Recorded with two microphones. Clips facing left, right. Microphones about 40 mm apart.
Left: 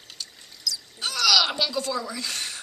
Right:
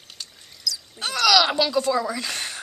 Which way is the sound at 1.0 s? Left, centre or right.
Centre.